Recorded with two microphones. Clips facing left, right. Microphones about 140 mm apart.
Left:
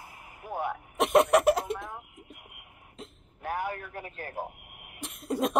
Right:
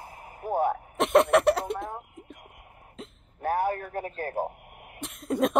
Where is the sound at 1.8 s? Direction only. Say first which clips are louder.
Right 5 dB; 40° right (ahead or behind).